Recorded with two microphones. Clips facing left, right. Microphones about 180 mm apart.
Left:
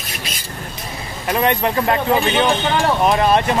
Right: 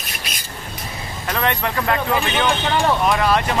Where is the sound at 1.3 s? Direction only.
20° left (ahead or behind).